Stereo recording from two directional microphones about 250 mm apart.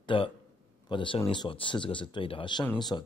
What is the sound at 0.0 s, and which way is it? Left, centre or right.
A man's voice, left.